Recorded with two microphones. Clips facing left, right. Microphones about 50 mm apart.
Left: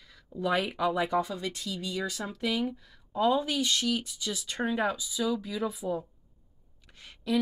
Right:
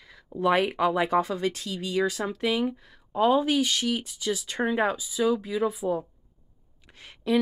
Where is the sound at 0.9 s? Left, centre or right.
Right.